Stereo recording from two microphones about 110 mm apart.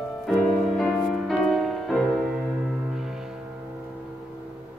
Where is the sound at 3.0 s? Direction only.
5° right (ahead or behind).